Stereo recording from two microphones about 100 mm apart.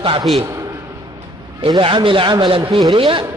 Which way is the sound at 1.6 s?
55° right (ahead or behind).